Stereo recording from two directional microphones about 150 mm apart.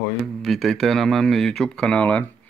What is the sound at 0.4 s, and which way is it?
Speech, centre (ahead or behind).